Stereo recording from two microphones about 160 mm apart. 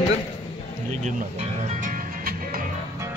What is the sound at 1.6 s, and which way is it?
Music, 50° right (ahead or behind).